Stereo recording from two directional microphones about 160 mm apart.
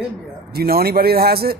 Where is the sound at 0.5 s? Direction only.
70° right (ahead or behind).